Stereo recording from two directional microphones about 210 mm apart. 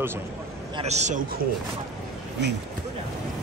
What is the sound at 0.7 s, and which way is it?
Speech, 30° right (ahead or behind).